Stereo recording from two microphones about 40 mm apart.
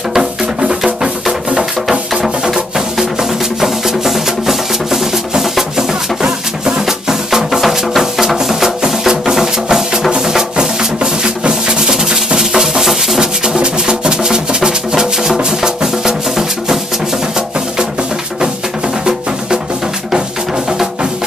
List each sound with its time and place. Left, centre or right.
0.1 s music: centre
6.9 s music: centre
7.6 s music: centre
8.4 s music: centre